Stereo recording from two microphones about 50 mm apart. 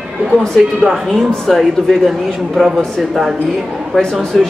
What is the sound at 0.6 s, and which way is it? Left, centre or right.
A man's voice, centre.